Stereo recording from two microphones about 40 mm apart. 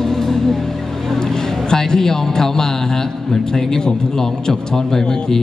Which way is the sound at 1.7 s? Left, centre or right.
Centre.